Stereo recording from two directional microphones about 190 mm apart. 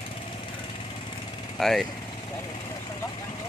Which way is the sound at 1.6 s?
Centre (ahead or behind).